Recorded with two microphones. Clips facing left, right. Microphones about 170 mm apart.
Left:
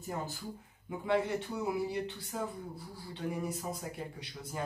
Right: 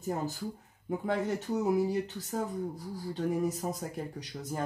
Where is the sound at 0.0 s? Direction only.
40° right (ahead or behind).